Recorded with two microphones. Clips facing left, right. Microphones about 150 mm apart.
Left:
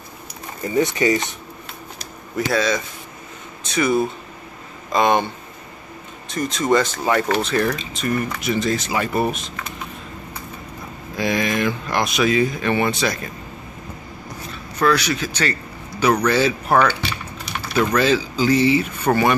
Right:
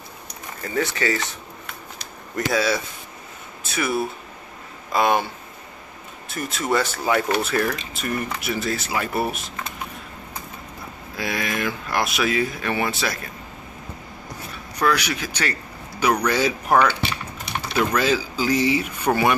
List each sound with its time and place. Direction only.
0.6 s speech: 20° left (ahead or behind)
2.3 s speech: 5° right (ahead or behind)
11.1 s speech: 5° right (ahead or behind)
14.5 s speech: 10° right (ahead or behind)